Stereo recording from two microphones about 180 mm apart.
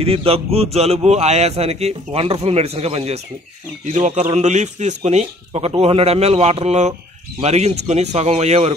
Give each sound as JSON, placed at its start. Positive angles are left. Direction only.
{"t": 0.0, "sound": "speech", "side_deg": -30}